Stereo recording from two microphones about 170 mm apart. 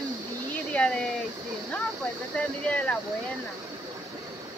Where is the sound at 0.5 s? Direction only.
10° left (ahead or behind).